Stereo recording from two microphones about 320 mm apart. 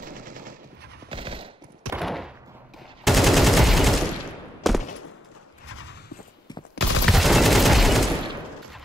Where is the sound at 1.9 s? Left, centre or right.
Centre.